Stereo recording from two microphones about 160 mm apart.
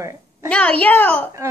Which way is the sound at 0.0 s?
20° right (ahead or behind).